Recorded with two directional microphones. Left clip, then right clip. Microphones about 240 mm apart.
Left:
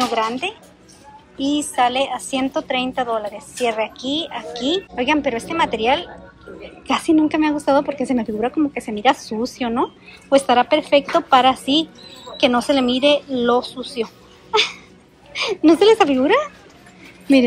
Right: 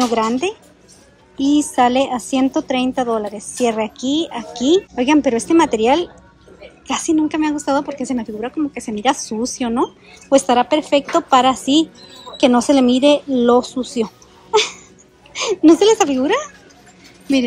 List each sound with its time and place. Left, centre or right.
0.0 s a woman's voice: centre